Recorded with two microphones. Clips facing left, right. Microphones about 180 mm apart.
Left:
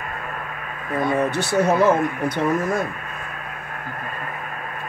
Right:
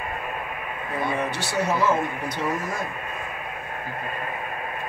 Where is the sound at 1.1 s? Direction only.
50° left (ahead or behind).